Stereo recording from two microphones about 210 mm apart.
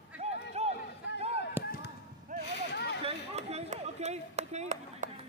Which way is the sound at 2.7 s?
55° left (ahead or behind).